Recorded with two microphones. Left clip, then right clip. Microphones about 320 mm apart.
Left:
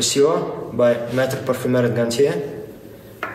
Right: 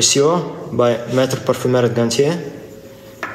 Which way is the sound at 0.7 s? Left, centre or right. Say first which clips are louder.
Right 2 dB; right.